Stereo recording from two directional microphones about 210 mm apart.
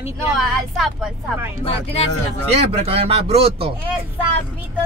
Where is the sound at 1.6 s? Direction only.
30° left (ahead or behind).